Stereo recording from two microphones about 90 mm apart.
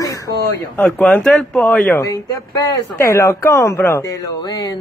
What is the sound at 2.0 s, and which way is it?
Speech, 40° left (ahead or behind).